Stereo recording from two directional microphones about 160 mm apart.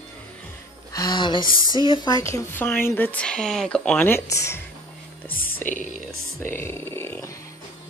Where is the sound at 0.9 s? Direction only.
25° left (ahead or behind).